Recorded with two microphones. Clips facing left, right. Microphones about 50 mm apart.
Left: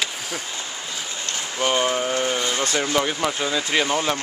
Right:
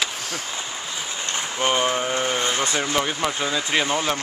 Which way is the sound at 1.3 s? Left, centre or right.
Right.